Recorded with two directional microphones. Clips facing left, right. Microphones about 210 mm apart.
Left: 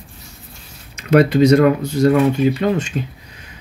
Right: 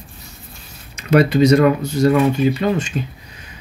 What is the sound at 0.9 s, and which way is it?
Speech, 55° left (ahead or behind).